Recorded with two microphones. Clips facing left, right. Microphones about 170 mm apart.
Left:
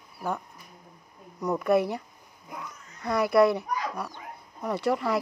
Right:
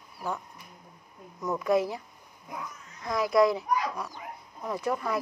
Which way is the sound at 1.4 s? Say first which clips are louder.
Left 2 dB; 60° left (ahead or behind).